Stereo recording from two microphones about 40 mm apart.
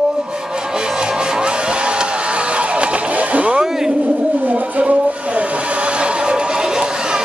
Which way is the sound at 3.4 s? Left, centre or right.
Right.